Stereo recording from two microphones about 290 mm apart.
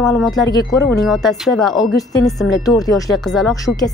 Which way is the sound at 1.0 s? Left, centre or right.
Centre.